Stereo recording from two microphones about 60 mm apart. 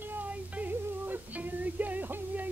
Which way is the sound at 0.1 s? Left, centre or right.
Right.